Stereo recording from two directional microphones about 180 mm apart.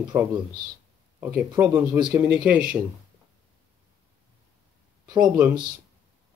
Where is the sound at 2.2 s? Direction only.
10° right (ahead or behind).